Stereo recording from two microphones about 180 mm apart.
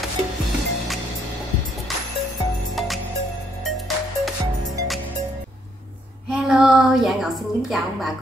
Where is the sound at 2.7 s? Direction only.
Centre (ahead or behind).